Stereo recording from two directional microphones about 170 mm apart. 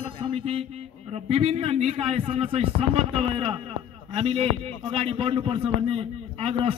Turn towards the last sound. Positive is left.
turn(degrees=-35)  # may be behind; listen again after turning